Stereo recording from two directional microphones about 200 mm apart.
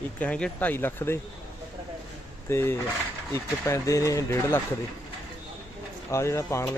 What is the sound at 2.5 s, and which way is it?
Speech, 10° left (ahead or behind).